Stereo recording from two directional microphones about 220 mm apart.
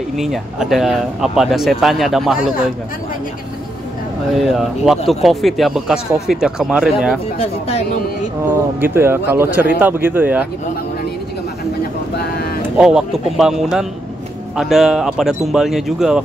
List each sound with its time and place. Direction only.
0.2 s speech: centre (ahead or behind)
4.5 s speech: centre (ahead or behind)
7.3 s speech: 30° left (ahead or behind)
8.8 s speech: 10° right (ahead or behind)
12.7 s speech: 5° right (ahead or behind)